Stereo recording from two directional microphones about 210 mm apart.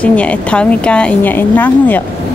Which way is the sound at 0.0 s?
5° left (ahead or behind).